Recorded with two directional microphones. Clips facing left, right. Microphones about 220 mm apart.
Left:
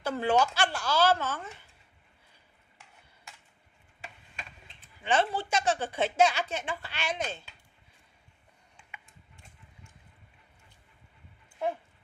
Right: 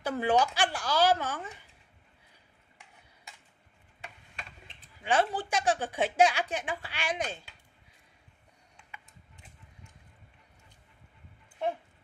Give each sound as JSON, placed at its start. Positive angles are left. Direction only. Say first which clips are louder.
{"t": 0.0, "sound": "a woman's voice", "louder": "even", "side_deg": -15}
{"t": 5.0, "sound": "a woman's voice", "louder": "even", "side_deg": -10}